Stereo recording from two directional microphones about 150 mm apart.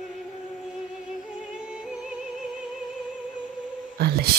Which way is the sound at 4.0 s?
90° right.